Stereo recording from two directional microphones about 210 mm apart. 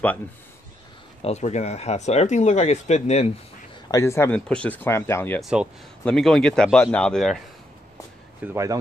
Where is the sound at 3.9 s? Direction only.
15° left (ahead or behind).